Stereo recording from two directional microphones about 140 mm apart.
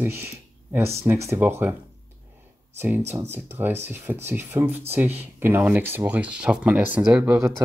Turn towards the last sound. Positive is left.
turn(degrees=-10)  # may be behind; listen again after turning